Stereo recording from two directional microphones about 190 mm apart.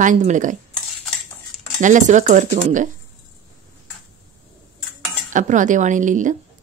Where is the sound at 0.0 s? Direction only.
40° right (ahead or behind).